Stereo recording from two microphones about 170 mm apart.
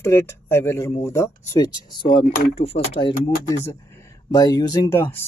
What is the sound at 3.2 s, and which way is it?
Speech, 15° left (ahead or behind).